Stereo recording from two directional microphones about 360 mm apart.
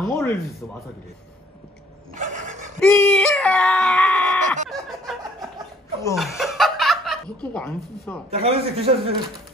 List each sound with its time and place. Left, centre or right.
0.0 s speech: centre
2.8 s a sound: centre
4.6 s music: centre
6.0 s speech: centre
8.3 s a man's voice: centre